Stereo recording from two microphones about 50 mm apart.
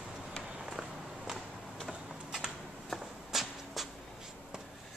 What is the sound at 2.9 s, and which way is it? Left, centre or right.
Walk, centre.